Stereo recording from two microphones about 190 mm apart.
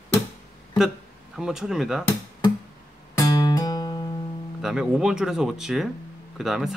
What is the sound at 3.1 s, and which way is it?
Music, 20° left (ahead or behind).